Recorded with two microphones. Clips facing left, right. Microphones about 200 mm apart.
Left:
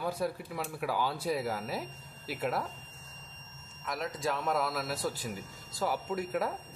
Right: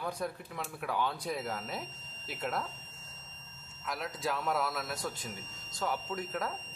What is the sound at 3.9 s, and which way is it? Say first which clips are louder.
A man's voice: left 2 dB; centre (ahead or behind).